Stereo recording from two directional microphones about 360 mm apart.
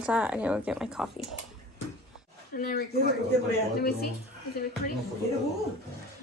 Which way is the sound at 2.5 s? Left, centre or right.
Left.